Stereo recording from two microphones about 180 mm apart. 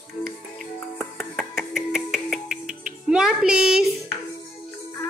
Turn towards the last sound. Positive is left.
turn(degrees=-5)  # may be behind; listen again after turning